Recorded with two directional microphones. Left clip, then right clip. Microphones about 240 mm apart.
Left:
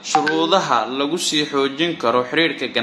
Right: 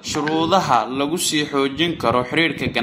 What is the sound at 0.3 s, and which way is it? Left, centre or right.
A man's voice, right.